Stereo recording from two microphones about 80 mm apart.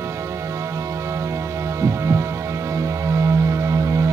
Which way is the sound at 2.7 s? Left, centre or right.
Right.